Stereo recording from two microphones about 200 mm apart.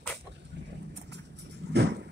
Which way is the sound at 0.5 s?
60° right (ahead or behind).